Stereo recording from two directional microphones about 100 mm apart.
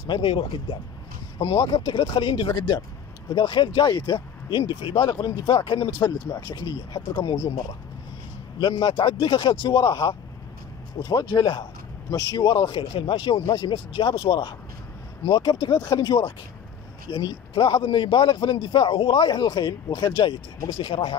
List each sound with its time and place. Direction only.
0.0 s a man's voice: 55° left (ahead or behind)
8.5 s a man's voice: 50° left (ahead or behind)